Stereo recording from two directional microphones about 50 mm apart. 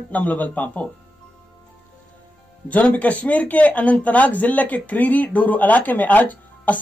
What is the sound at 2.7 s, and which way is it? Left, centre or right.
Speech, left.